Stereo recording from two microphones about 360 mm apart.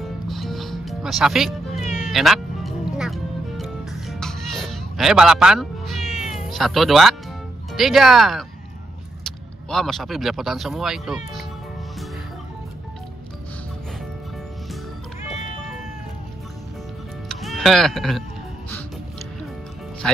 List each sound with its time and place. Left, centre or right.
0.3 s music: centre
1.8 s cat: centre
2.0 s music: centre
6.3 s speech: centre
17.3 s music: centre